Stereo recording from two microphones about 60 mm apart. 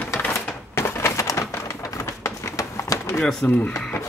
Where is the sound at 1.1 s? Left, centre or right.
Left.